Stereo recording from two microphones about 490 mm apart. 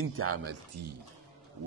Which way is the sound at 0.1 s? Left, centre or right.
Right.